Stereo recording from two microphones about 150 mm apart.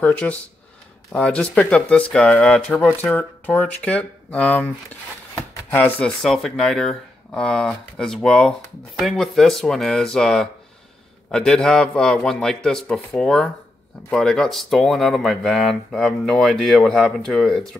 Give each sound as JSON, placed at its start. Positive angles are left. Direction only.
{"t": 0.0, "sound": "speech", "side_deg": 10}
{"t": 5.7, "sound": "speech", "side_deg": 10}